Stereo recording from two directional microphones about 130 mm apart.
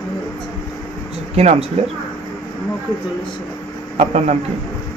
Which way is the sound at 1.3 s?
55° right (ahead or behind).